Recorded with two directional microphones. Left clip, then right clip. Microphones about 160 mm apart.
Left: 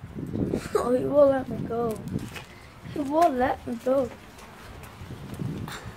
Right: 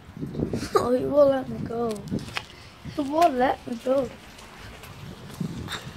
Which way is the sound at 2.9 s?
15° right (ahead or behind).